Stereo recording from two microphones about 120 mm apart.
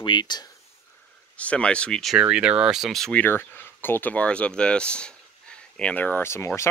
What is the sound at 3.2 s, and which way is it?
Speech, 15° left (ahead or behind).